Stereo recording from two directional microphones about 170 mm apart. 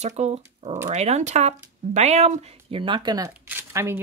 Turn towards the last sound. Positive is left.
turn(degrees=-15)  # may be behind; listen again after turning